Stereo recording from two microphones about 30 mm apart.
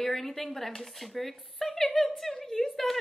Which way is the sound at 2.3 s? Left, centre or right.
Centre.